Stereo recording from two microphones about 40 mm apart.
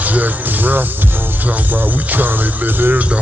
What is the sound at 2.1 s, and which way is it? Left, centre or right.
Speech, right.